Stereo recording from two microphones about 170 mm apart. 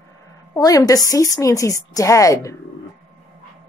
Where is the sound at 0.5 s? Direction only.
20° left (ahead or behind).